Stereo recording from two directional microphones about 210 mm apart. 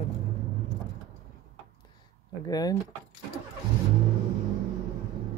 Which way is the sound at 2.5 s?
20° left (ahead or behind).